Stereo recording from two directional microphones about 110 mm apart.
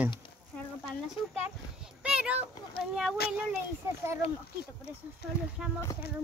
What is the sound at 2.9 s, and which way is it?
Speech, 5° right (ahead or behind).